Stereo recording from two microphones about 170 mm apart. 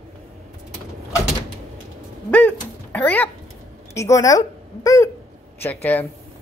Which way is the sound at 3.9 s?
20° left (ahead or behind).